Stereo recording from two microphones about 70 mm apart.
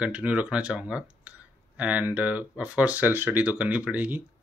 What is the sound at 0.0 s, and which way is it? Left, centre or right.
Speech, right.